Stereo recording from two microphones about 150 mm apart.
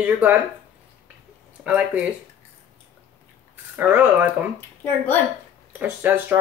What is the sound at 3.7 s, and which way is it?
Speech, 15° right (ahead or behind).